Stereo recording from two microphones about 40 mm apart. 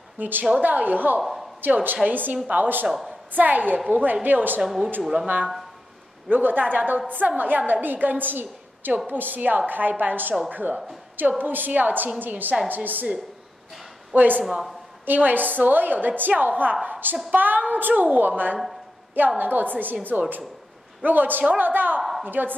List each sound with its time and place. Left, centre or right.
0.2 s a woman's voice: right
1.2 s a sound: centre
1.7 s a woman's voice: right
4.6 s speech: centre
5.2 s speech: right
6.2 s a woman's voice: right
14.1 s a woman's voice: right